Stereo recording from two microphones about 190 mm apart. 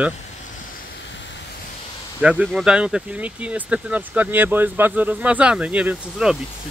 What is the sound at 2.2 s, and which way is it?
Speech, 5° right (ahead or behind).